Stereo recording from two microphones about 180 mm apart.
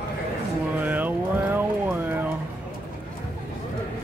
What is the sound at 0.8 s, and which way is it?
Music, 10° right (ahead or behind).